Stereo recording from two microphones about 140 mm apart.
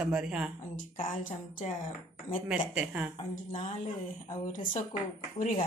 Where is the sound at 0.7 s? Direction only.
75° left (ahead or behind).